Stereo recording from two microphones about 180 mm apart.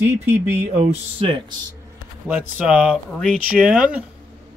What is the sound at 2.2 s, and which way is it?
Speech, 10° right (ahead or behind).